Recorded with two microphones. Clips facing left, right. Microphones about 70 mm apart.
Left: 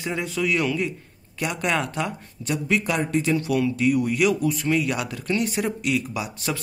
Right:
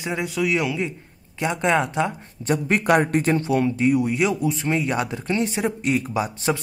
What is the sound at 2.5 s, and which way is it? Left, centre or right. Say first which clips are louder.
Speech: right 5 dB; right.